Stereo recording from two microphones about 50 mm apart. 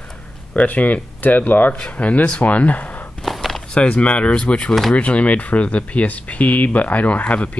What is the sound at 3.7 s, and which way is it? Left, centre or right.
Speech, left.